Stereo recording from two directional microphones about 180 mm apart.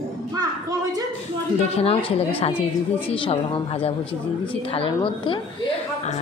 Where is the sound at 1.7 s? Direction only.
35° left (ahead or behind).